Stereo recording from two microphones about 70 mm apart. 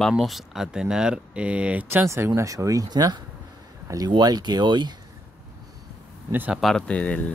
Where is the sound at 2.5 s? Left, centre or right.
Right.